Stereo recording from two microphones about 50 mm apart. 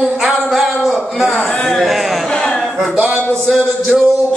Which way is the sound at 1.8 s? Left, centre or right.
Centre.